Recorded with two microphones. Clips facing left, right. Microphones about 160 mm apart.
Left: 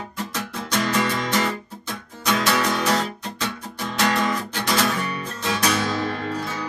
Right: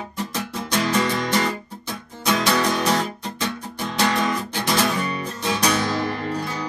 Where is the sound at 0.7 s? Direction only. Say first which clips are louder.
Right 1 dB; 25° right (ahead or behind).